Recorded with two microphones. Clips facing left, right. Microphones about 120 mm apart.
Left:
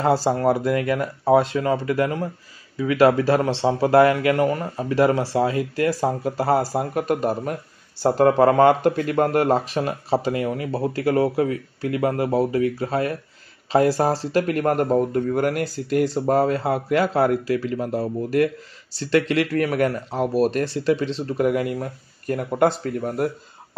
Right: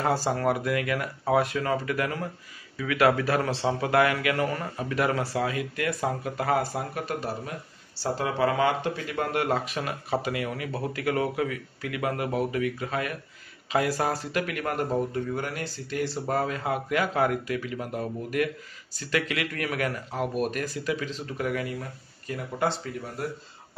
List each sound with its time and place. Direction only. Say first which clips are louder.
0.0 s speech: left 6 dB; 30° left (ahead or behind); by 15.6 s 50° left (ahead or behind)
16.1 s speech: left 9 dB; 40° left (ahead or behind)
21.4 s speech: left 9 dB; 45° left (ahead or behind)